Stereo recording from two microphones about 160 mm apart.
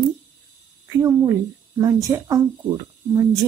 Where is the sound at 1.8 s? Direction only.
20° right (ahead or behind).